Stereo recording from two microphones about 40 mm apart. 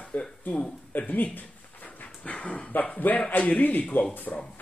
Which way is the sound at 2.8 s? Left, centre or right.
Left.